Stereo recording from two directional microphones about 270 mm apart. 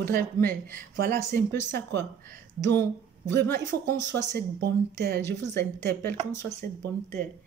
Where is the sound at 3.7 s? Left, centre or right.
Right.